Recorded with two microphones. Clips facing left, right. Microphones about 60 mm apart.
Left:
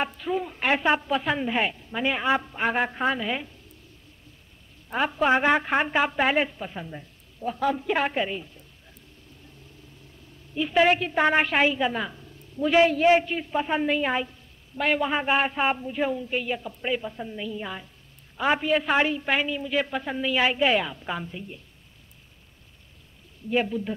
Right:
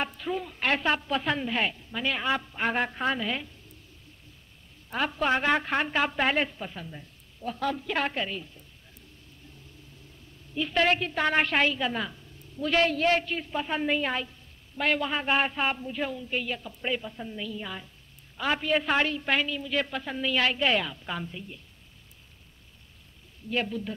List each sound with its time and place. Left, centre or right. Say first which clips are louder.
0.0 s a woman's voice: left 4 dB; centre
4.8 s a woman's voice: left 4 dB; centre
6.7 s a woman's voice: left 4 dB; centre
10.5 s a woman's voice: left 4 dB; centre
18.7 s a woman's voice: left 3 dB; centre
23.5 s a woman's voice: left 5 dB; centre